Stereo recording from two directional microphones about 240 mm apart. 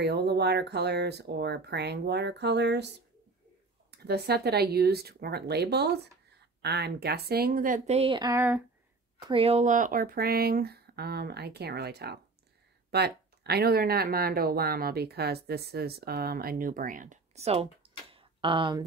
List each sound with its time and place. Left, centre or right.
0.0 s speech: right
3.9 s speech: right; by 8.6 s centre
9.2 s speech: right
18.1 s tick-tock: right